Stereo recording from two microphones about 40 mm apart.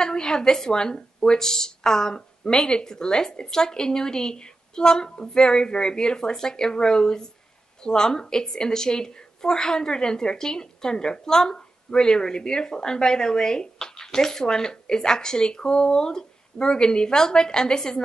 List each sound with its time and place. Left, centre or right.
0.0 s a woman's voice: centre